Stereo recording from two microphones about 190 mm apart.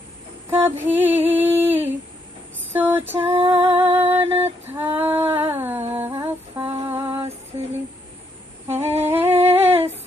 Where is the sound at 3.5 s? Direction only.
10° right (ahead or behind).